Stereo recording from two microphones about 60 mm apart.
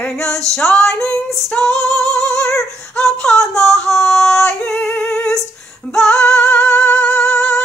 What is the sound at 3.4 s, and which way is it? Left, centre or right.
Music, centre.